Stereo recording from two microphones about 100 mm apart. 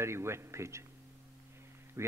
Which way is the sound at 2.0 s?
30° right (ahead or behind).